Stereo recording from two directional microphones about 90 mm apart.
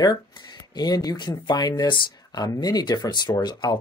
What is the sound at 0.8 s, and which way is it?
Speech, 45° left (ahead or behind).